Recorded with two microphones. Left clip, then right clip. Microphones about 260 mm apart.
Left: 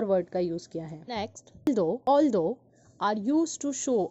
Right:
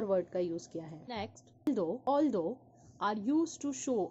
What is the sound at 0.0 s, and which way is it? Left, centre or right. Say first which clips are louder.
A woman's voice: left 6 dB; centre.